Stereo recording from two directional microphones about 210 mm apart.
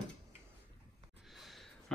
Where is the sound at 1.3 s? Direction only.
Centre (ahead or behind).